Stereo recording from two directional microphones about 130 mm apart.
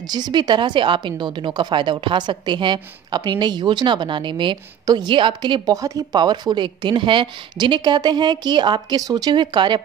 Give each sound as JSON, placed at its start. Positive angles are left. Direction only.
{"t": 0.1, "sound": "a woman's voice", "side_deg": -35}